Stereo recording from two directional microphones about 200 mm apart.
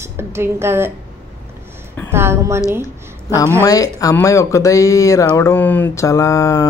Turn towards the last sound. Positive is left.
turn(degrees=15)  # may be behind; listen again after turning